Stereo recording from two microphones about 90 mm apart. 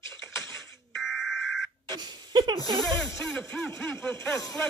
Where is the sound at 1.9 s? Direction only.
50° right (ahead or behind).